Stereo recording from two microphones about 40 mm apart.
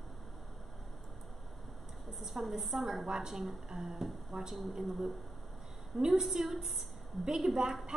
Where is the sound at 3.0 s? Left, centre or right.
Centre.